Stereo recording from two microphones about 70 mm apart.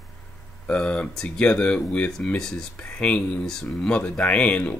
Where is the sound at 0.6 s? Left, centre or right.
Centre.